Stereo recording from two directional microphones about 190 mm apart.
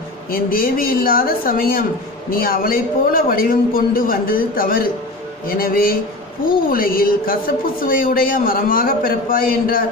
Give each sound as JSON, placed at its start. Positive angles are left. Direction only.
{"t": 0.3, "sound": "a woman's voice", "side_deg": 50}